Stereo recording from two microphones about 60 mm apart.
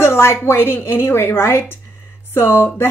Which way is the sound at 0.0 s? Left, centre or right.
Left.